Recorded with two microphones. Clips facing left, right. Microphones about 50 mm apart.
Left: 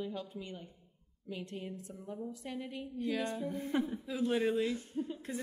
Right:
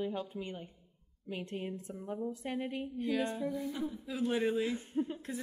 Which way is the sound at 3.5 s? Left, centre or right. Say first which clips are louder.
Left 2 dB; left.